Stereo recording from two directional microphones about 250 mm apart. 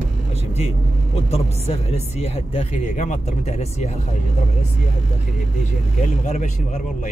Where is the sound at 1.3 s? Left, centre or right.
Left.